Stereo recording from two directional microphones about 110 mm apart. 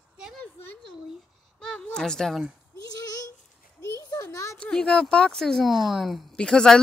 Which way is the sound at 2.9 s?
35° left (ahead or behind).